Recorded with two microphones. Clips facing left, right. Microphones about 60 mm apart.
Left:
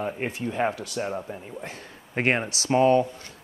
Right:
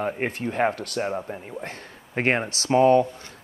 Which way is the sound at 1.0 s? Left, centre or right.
Centre.